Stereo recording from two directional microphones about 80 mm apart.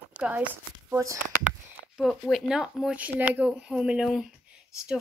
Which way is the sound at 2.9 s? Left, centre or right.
Centre.